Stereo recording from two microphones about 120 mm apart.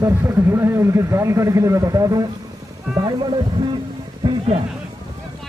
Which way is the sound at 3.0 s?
45° right (ahead or behind).